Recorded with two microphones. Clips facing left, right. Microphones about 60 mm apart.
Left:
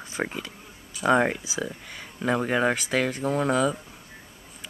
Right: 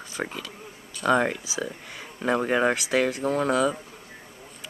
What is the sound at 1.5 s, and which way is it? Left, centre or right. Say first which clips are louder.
Speech: even; centre.